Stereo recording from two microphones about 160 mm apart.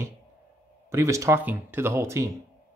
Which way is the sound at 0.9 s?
20° right (ahead or behind).